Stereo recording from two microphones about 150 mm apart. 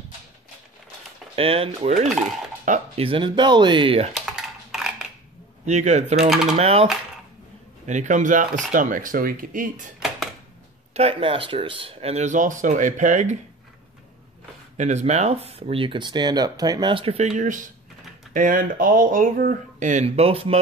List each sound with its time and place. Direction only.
1.3 s speech: 40° right (ahead or behind)
2.7 s speech: 60° right (ahead or behind)
3.0 s speech: 35° right (ahead or behind)
4.1 s a sound: centre (ahead or behind)
5.7 s speech: 50° right (ahead or behind)
7.8 s speech: 55° right (ahead or behind)
9.9 s a sound: centre (ahead or behind)
10.9 s speech: 45° right (ahead or behind)
14.8 s speech: 50° right (ahead or behind)
20.1 s speech: 40° right (ahead or behind)